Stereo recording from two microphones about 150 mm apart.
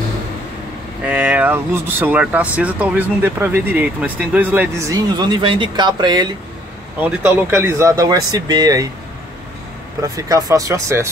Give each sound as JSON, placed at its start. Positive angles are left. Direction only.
{"t": 1.0, "sound": "speech", "side_deg": -10}
{"t": 7.0, "sound": "speech", "side_deg": -15}
{"t": 10.1, "sound": "speech", "side_deg": -25}